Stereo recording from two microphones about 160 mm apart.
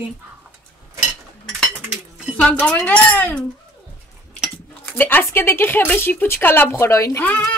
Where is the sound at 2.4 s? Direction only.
5° left (ahead or behind).